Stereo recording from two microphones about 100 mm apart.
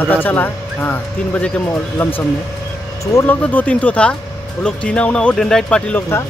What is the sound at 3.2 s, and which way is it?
Speech, 15° left (ahead or behind).